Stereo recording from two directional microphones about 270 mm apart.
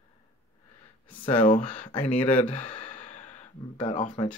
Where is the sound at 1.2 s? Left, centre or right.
Left.